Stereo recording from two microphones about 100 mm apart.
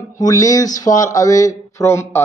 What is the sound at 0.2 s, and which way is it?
Speech, 35° left (ahead or behind).